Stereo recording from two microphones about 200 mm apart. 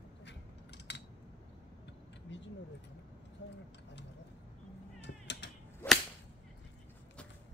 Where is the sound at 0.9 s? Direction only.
60° left (ahead or behind).